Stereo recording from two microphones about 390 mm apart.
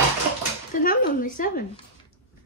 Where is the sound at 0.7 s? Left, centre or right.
Left.